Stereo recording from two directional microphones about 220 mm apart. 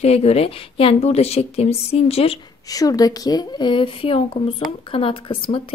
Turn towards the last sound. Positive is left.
turn(degrees=25)  # may be behind; listen again after turning